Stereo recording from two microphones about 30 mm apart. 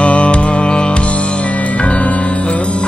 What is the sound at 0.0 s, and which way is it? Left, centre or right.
Music, left.